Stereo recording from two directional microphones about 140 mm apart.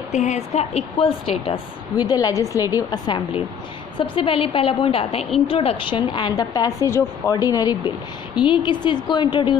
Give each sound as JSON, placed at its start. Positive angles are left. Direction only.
{"t": 0.1, "sound": "a woman's voice", "side_deg": 55}
{"t": 2.0, "sound": "a woman's voice", "side_deg": 30}
{"t": 4.0, "sound": "a woman's voice", "side_deg": 40}